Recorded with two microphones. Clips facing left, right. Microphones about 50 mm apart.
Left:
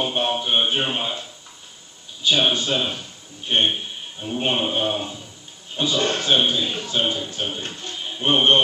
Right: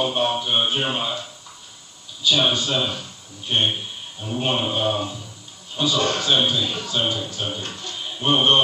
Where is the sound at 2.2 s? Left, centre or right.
Left.